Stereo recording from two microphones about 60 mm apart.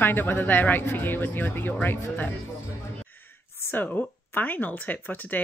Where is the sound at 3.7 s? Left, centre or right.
Left.